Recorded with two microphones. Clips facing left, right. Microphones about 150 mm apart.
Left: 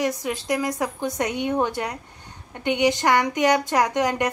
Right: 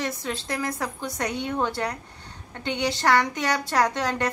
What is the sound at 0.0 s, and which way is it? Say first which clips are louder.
A woman's voice: left 5 dB; 15° left (ahead or behind).